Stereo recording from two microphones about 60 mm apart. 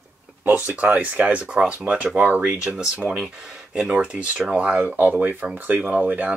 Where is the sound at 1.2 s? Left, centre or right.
Centre.